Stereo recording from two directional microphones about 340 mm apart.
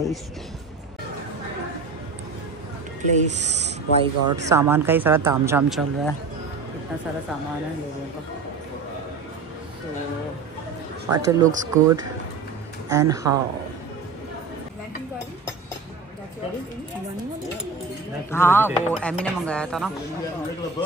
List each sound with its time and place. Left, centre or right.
3.0 s speech: centre
4.5 s speech: centre
11.1 s speech: centre
18.3 s speech: centre